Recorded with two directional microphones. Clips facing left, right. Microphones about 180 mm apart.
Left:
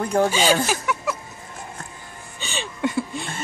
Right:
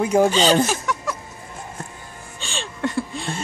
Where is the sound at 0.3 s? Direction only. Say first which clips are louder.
Right 2 dB; 10° left (ahead or behind).